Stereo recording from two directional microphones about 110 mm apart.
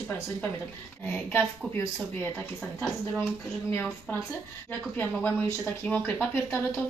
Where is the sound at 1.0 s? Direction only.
15° left (ahead or behind).